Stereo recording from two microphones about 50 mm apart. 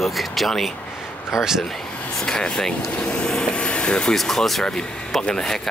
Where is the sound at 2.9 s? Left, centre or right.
Left.